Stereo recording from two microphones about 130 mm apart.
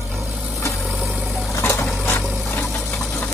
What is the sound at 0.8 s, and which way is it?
Vehicle, centre (ahead or behind).